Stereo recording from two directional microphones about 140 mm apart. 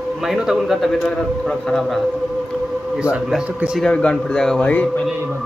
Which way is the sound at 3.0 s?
5° right (ahead or behind).